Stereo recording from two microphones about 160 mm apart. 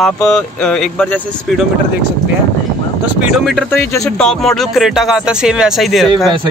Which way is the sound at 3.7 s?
15° left (ahead or behind).